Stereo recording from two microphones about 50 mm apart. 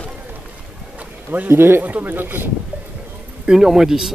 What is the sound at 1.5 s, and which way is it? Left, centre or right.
Speech, right.